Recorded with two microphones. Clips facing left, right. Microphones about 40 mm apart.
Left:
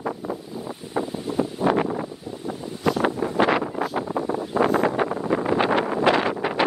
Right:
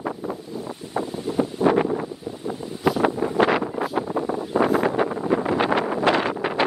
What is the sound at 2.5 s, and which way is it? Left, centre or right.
Wind noise, centre.